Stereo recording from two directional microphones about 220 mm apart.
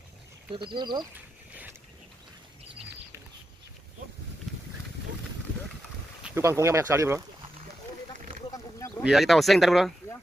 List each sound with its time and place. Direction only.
0.7 s speech: 20° right (ahead or behind)
1.5 s vehicle: 10° right (ahead or behind)
6.2 s speech: 10° right (ahead or behind)
8.5 s a sound: 15° left (ahead or behind)
9.0 s speech: centre (ahead or behind)